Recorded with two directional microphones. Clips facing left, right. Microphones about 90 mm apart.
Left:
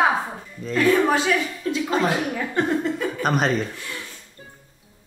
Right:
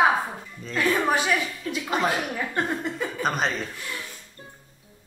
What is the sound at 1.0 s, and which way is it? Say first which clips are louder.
Speech: left 3 dB; 10° right (ahead or behind).